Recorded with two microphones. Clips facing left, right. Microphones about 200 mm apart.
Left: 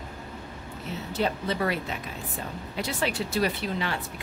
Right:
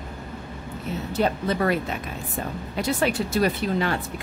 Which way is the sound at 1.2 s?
50° right (ahead or behind).